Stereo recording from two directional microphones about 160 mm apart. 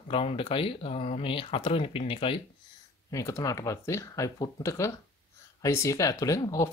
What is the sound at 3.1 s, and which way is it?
Speech, 20° left (ahead or behind).